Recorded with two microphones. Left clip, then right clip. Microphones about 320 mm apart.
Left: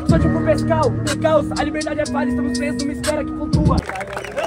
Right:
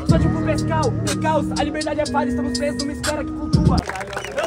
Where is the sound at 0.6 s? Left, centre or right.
Centre.